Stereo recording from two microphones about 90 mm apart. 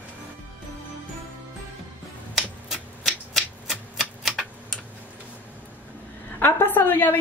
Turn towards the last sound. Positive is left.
turn(degrees=20)  # may be behind; listen again after turning